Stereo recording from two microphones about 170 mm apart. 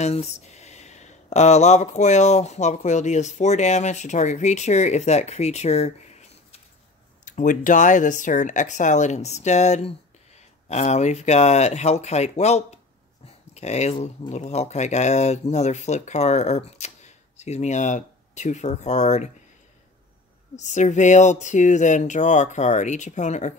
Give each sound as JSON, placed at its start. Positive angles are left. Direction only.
{"t": 0.0, "sound": "speech", "side_deg": 40}
{"t": 20.5, "sound": "speech", "side_deg": 45}